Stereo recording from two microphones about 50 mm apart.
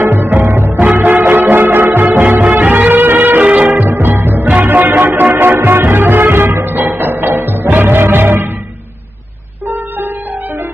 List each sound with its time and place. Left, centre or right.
0.0 s music: right
0.9 s music: right
3.4 s music: right
3.8 s music: right
9.7 s music: right